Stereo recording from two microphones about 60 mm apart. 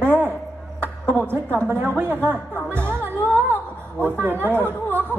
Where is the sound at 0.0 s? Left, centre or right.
Right.